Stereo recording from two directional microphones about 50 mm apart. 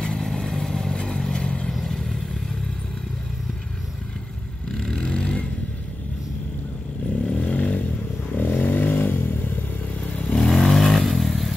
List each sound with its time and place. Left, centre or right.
0.0 s vehicle: centre
1.7 s vehicle: centre
4.7 s vehicle: centre
5.0 s vehicle: centre
7.3 s vehicle: left
9.9 s vehicle: left
10.5 s vehicle: centre